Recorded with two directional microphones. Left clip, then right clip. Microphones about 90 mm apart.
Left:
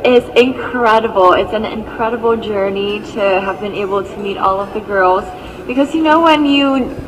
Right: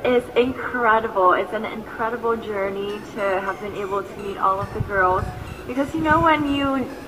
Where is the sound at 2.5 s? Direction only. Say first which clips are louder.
Left 9 dB; 50° left (ahead or behind).